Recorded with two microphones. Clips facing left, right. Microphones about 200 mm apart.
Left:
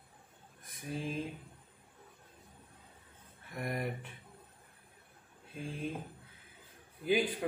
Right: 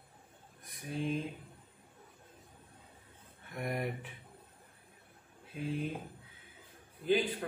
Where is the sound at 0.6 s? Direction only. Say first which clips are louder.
Right 2 dB; centre (ahead or behind).